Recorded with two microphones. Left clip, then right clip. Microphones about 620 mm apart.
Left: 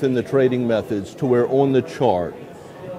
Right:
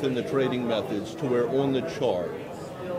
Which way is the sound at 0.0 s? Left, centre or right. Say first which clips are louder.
Left 8 dB; left.